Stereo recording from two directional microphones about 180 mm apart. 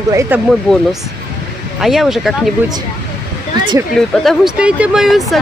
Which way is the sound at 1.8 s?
Centre (ahead or behind).